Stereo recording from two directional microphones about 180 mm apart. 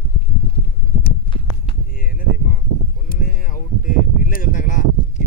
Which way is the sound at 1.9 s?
50° left (ahead or behind).